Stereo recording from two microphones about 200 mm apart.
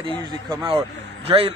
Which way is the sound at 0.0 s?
20° right (ahead or behind).